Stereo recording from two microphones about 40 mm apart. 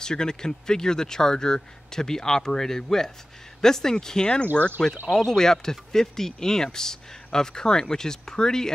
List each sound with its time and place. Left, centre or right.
0.0 s speech: centre
4.6 s speech: left
5.1 s speech: centre